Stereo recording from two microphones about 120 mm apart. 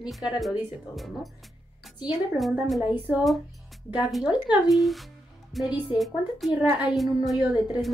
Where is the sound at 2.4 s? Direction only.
Centre (ahead or behind).